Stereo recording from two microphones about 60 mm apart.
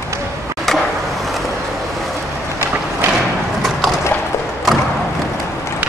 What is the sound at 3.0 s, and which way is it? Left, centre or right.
Thump, right.